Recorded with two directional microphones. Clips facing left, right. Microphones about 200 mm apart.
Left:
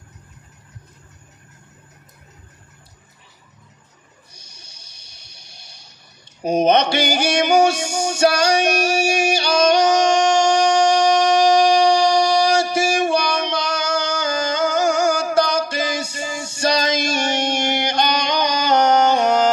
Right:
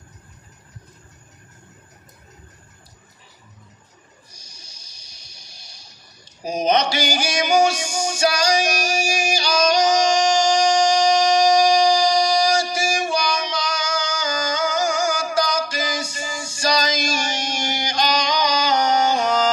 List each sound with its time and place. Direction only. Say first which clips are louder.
4.3 s music: even; 60° left (ahead or behind)
6.4 s a sound: left 4 dB; 60° left (ahead or behind)
14.4 s music: left 4 dB; 60° left (ahead or behind)